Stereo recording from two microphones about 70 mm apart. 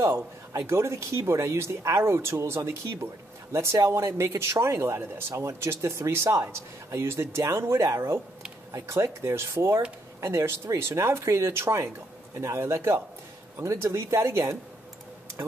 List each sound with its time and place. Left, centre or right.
0.0 s speech: right